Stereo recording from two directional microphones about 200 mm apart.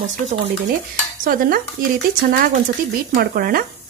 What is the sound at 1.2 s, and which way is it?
A woman's voice, 45° right (ahead or behind).